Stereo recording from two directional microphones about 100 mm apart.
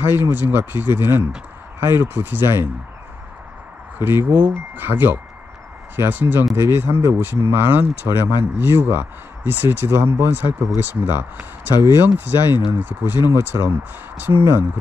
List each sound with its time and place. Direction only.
0.0 s speech: 20° right (ahead or behind)
4.0 s speech: 20° right (ahead or behind)
11.7 s speech: 40° left (ahead or behind)
12.0 s speech: 20° right (ahead or behind)